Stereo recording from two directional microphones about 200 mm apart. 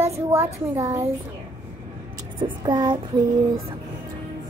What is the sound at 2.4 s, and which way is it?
Child singing, 25° right (ahead or behind).